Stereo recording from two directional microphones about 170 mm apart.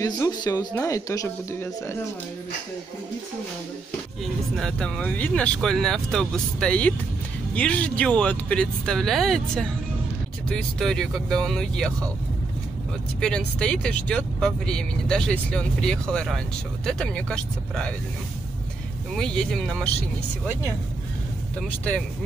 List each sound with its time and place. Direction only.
0.0 s speech: 20° left (ahead or behind)
4.2 s speech: centre (ahead or behind)
13.2 s speech: 5° left (ahead or behind)
19.1 s speech: centre (ahead or behind)
21.5 s speech: 5° left (ahead or behind)